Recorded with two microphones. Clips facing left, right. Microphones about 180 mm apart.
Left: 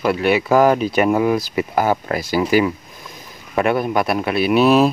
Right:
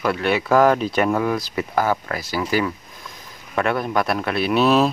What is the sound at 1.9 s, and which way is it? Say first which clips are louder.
Speech: left 5 dB; 20° left (ahead or behind).